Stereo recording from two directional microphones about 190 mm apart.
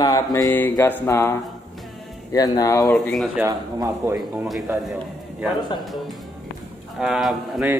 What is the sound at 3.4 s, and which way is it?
Speech, 15° right (ahead or behind).